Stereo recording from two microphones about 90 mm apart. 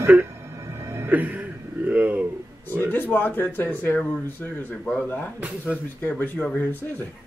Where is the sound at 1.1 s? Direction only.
15° right (ahead or behind).